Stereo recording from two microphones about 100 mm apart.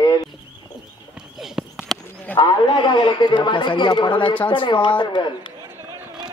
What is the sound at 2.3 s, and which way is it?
A man's voice, 50° left (ahead or behind).